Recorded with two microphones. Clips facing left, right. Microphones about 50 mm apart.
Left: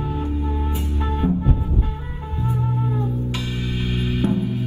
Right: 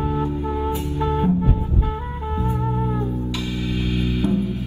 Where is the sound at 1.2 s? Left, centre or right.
Right.